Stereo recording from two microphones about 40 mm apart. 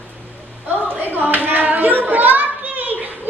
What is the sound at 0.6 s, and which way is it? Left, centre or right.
Children playing, right.